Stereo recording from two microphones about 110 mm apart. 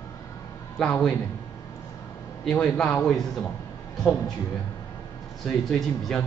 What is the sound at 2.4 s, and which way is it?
A man's voice, 10° left (ahead or behind).